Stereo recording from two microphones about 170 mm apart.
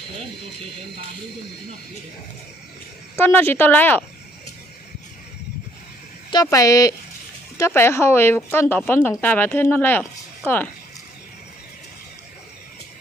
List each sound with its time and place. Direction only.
3.2 s speech: 10° left (ahead or behind)
6.3 s speech: 20° left (ahead or behind)